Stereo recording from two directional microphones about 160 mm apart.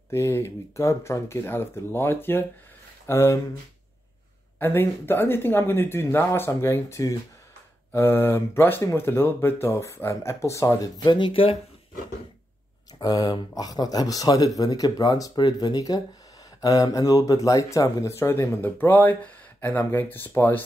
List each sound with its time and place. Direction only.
0.1 s speech: 15° left (ahead or behind)
4.6 s speech: 15° left (ahead or behind)
11.0 s speech: 30° left (ahead or behind)
13.0 s speech: 25° left (ahead or behind)